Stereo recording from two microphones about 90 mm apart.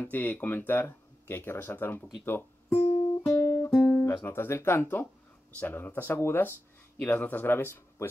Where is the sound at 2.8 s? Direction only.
90° left.